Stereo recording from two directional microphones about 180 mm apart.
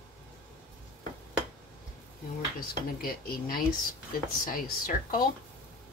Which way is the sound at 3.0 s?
55° left (ahead or behind).